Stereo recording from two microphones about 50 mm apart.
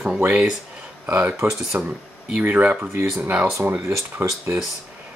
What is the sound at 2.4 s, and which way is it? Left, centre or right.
Speech, right.